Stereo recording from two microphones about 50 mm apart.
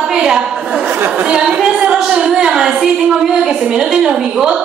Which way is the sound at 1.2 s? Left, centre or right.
Centre.